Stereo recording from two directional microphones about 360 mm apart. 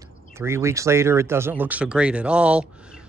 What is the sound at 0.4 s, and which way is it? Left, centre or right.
Speech, centre.